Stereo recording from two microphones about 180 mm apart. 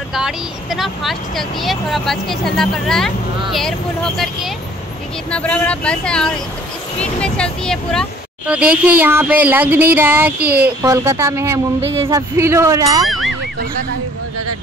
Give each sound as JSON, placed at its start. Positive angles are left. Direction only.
{"t": 0.1, "sound": "speech", "side_deg": 0}
{"t": 8.5, "sound": "speech", "side_deg": -5}
{"t": 13.0, "sound": "a sound", "side_deg": 0}